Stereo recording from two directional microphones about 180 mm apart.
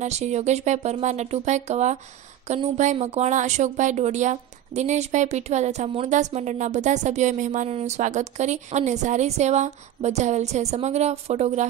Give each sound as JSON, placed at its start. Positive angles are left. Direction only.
{"t": 0.0, "sound": "a woman's voice", "side_deg": -40}